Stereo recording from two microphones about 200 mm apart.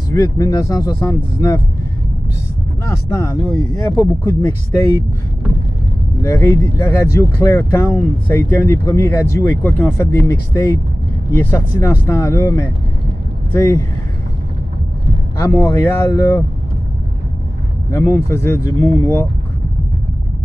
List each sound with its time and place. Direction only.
0.1 s speech: 15° left (ahead or behind)
2.8 s speech: 15° left (ahead or behind)
6.2 s speech: 15° left (ahead or behind)
15.4 s speech: 15° left (ahead or behind)
17.9 s speech: 15° left (ahead or behind)